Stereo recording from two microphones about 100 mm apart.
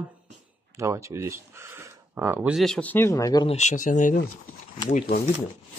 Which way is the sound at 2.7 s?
20° left (ahead or behind).